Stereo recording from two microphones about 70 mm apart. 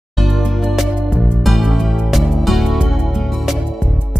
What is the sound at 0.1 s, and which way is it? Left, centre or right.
Music, centre.